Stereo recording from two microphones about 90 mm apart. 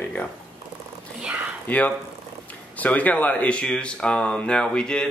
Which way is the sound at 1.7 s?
15° left (ahead or behind).